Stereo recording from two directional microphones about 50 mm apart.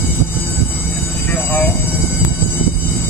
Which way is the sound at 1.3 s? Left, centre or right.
Left.